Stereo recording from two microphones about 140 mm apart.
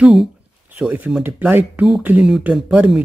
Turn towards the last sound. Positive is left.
turn(degrees=-5)  # may be behind; listen again after turning